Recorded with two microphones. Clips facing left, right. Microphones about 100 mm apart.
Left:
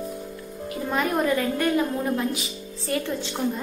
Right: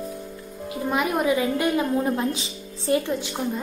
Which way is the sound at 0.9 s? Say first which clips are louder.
Right 1 dB; 10° right (ahead or behind).